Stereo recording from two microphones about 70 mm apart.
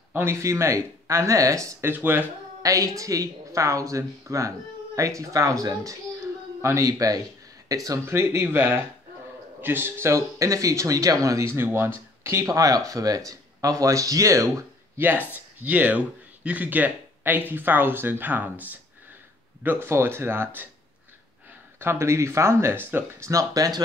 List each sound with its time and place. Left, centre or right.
0.1 s speech: right
1.9 s speech: right
2.6 s speech: right
6.9 s speech: right
8.0 s speech: right
11.4 s speech: right
15.0 s speech: right
21.7 s speech: right
23.2 s speech: right